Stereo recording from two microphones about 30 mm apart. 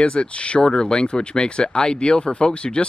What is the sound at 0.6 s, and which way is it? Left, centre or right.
A man's voice, left.